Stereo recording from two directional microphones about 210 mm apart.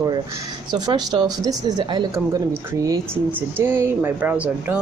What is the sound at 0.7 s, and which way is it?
Speech, 20° right (ahead or behind).